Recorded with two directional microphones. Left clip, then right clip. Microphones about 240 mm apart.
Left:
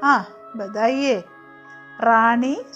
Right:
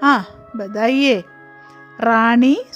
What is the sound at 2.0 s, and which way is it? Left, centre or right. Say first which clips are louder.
Speech: right 2 dB; right.